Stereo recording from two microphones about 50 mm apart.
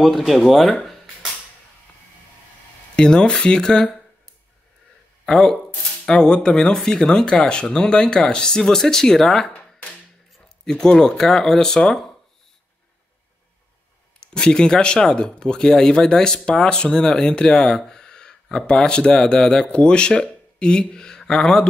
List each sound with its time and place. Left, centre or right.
0.0 s speech: centre
3.0 s speech: centre
5.2 s speech: centre
9.5 s a sound: left
10.6 s speech: centre
14.2 s speech: centre